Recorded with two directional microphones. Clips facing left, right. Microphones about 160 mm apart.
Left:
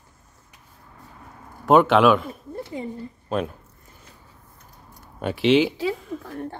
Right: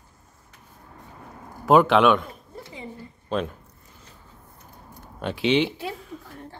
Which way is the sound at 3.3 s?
5° left (ahead or behind).